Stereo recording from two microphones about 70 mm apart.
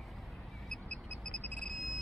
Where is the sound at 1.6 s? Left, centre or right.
Centre.